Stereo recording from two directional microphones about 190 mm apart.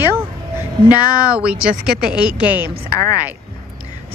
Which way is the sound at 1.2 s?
5° right (ahead or behind).